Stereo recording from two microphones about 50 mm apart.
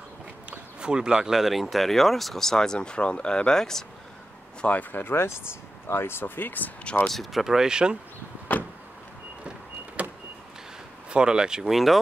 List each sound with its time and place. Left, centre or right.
0.5 s speech: centre
4.6 s speech: left
4.9 s speech: left
7.1 s speech: centre
7.4 s speech: centre
8.5 s vehicle: left
10.0 s vehicle: right
11.1 s speech: centre
11.6 s speech: centre